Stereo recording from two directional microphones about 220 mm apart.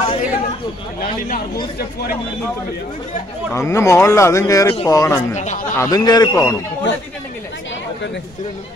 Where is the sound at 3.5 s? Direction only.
15° left (ahead or behind).